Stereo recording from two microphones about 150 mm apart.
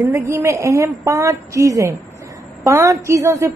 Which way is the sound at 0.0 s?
15° right (ahead or behind).